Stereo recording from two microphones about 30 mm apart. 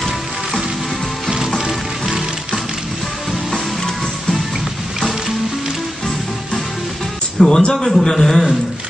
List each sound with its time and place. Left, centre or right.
7.3 s speech: centre